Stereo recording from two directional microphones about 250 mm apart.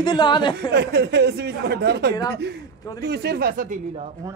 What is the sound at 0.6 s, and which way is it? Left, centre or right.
Speech, right.